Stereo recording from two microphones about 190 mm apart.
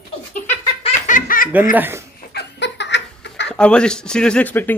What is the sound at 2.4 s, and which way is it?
Laughter, 65° left (ahead or behind).